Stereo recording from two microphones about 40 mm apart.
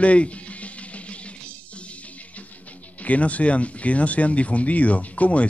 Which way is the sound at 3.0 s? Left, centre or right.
Left.